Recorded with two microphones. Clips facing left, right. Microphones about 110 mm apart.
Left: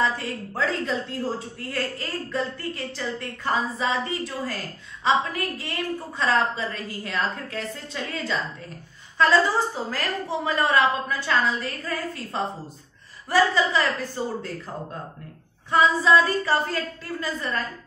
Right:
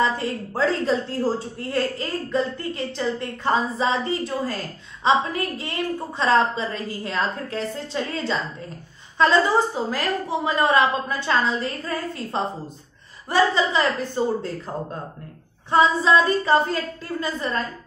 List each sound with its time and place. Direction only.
0.0 s a woman's voice: 25° right (ahead or behind)
15.7 s a woman's voice: 25° right (ahead or behind)